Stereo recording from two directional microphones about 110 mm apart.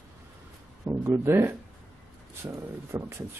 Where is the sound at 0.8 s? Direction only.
25° right (ahead or behind).